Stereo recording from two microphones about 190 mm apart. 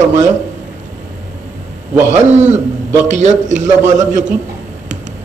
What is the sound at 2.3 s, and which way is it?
A man's voice, 40° right (ahead or behind).